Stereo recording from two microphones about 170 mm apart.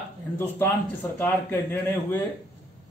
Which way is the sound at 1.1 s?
15° left (ahead or behind).